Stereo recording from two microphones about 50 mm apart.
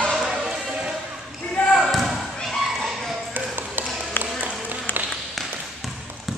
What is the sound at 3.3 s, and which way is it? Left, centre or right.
Ping, right.